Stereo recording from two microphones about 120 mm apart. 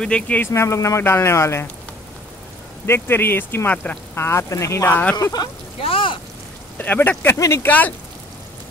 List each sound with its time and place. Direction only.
0.0 s speech: 10° left (ahead or behind)
0.4 s speech: 25° left (ahead or behind)
2.9 s speech: 20° left (ahead or behind)
4.1 s speech: 20° left (ahead or behind)
5.1 s speech: 35° left (ahead or behind)
5.8 s speech: 50° left (ahead or behind)
6.8 s speech: 15° left (ahead or behind)